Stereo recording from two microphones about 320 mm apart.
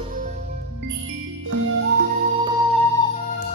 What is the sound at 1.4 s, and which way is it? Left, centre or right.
Music, right.